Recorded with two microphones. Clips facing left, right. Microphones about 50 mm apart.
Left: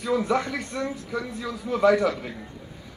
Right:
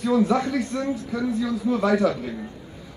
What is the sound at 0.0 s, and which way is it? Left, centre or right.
Speech, left.